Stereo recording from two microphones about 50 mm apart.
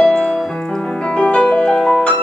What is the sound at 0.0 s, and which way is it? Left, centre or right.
Music, centre.